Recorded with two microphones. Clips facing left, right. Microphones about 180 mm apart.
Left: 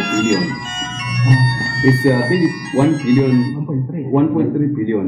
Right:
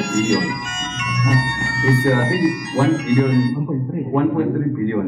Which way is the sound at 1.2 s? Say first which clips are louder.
Left 4 dB; 35° left (ahead or behind).